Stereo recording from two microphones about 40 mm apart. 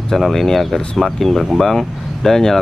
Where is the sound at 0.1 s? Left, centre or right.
Centre.